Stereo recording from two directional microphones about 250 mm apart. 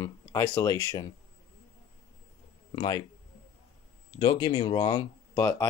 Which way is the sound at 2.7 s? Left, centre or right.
Centre.